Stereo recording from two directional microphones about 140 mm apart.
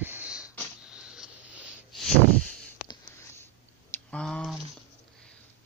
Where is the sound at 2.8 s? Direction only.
25° left (ahead or behind).